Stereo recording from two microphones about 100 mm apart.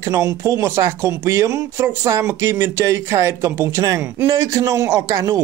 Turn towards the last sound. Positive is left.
turn(degrees=-35)  # may be behind; listen again after turning